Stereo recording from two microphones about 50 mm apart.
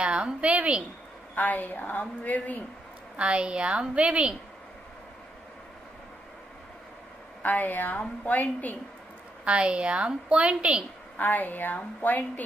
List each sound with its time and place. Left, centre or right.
0.0 s a sound: centre
0.4 s a woman's voice: right
1.3 s a woman's voice: left
3.2 s a woman's voice: right
7.4 s a woman's voice: left
9.4 s a woman's voice: right
11.1 s a woman's voice: left